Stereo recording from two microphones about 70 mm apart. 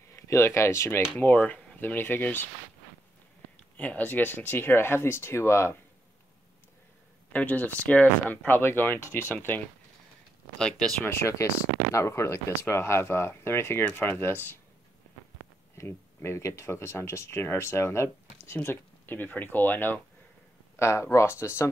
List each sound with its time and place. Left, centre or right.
0.1 s speech: left
3.7 s speech: left
7.3 s speech: left
10.6 s speech: centre
11.1 s speech: left
15.8 s speech: left
18.7 s speech: left
20.8 s speech: left